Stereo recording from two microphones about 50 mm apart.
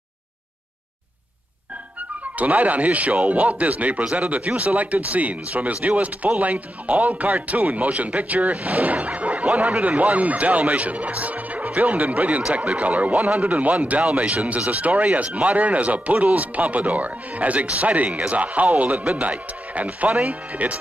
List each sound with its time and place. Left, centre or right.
2.3 s speech: right